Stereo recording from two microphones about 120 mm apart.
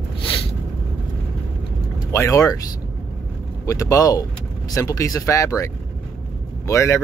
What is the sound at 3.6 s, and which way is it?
Speech, 25° left (ahead or behind).